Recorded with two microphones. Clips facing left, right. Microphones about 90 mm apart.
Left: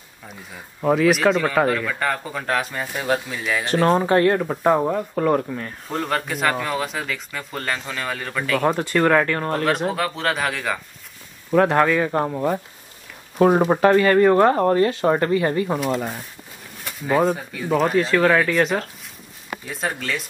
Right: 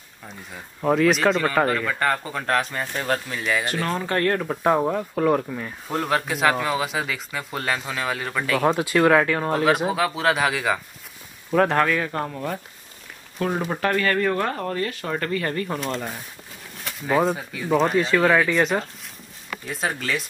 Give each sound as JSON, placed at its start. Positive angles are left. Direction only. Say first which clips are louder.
{"t": 0.5, "sound": "speech", "louder": "left 2 dB", "side_deg": 0}
{"t": 3.8, "sound": "speech", "louder": "left 9 dB", "side_deg": 35}
{"t": 4.1, "sound": "speech", "louder": "left 5 dB", "side_deg": 10}
{"t": 13.4, "sound": "speech", "louder": "left 9 dB", "side_deg": 35}
{"t": 13.7, "sound": "speech", "louder": "left 7 dB", "side_deg": 20}